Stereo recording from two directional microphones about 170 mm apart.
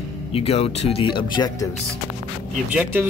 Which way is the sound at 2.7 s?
10° right (ahead or behind).